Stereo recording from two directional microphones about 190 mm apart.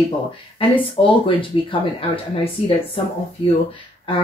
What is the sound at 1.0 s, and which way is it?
Speech, 25° left (ahead or behind).